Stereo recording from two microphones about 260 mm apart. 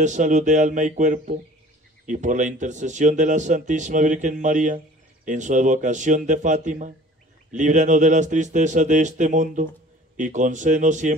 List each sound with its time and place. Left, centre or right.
0.0 s speech: right